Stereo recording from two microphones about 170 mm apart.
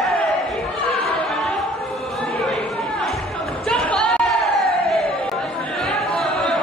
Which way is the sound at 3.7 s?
5° left (ahead or behind).